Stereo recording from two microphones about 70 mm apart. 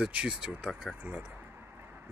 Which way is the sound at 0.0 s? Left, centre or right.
Centre.